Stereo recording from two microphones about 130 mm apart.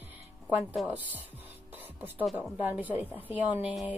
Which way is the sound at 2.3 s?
15° right (ahead or behind).